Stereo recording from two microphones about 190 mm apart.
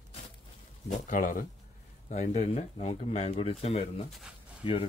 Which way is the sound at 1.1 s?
45° left (ahead or behind).